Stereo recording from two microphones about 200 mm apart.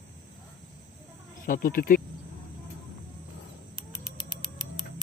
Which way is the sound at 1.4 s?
45° left (ahead or behind).